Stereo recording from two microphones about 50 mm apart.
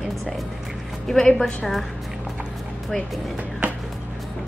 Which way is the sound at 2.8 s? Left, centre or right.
Centre.